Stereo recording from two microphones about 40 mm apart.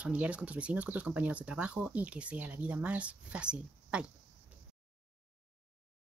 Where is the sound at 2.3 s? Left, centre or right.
Right.